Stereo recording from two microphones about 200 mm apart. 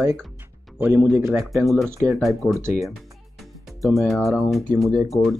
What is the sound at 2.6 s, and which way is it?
Speech, 15° right (ahead or behind).